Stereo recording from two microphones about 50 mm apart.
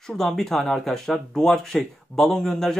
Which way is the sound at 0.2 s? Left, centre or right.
Centre.